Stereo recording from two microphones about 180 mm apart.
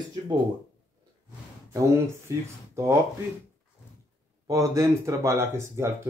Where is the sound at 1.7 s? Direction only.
15° right (ahead or behind).